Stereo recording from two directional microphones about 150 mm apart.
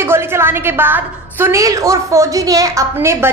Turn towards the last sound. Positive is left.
turn(degrees=-20)  # may be behind; listen again after turning